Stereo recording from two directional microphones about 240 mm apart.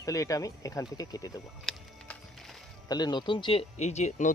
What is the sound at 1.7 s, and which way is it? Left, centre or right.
Music, centre.